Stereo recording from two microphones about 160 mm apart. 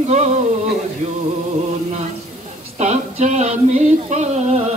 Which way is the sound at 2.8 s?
45° right (ahead or behind).